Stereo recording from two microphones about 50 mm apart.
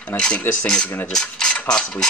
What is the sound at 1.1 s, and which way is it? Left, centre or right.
Mechanisms, centre.